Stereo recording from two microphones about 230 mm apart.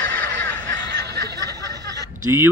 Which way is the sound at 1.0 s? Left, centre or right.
Right.